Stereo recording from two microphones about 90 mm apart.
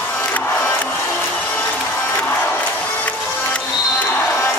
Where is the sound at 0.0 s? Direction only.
20° left (ahead or behind).